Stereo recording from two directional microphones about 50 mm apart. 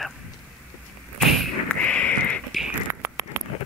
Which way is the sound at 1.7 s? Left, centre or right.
Left.